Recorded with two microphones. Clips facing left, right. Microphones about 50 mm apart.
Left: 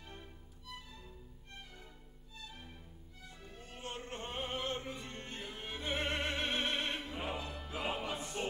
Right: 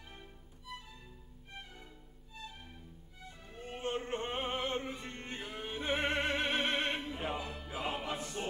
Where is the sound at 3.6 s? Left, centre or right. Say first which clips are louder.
Right 8 dB; right.